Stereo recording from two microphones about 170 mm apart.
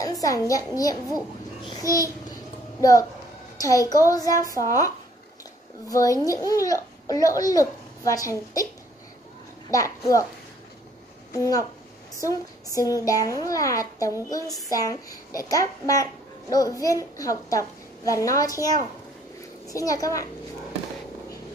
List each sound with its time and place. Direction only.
0.0 s a child's voice: 20° left (ahead or behind)
9.7 s a child's voice: 20° left (ahead or behind)
11.3 s a child's voice: 20° left (ahead or behind)
19.7 s a child's voice: 20° left (ahead or behind)